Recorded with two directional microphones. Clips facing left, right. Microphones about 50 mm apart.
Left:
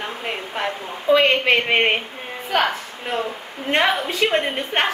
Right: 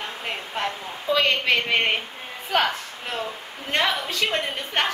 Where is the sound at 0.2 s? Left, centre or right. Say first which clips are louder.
Left 1 dB; centre.